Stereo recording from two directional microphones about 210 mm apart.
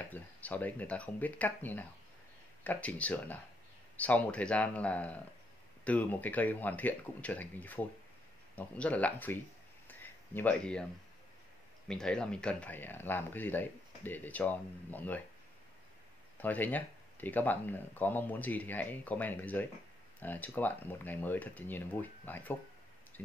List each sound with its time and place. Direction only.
0.1 s speech: 5° left (ahead or behind)
9.8 s a sound: 10° left (ahead or behind)
11.9 s speech: 5° left (ahead or behind)
16.3 s speech: 10° left (ahead or behind)